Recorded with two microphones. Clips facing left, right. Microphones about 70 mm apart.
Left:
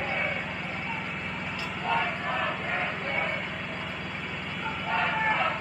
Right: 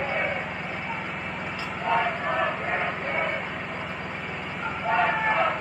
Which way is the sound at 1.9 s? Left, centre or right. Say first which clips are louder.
Right 4 dB; centre.